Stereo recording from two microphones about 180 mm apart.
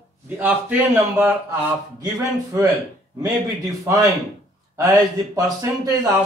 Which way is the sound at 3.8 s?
20° right (ahead or behind).